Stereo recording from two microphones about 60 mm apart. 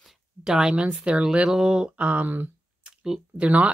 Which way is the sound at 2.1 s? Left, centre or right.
Right.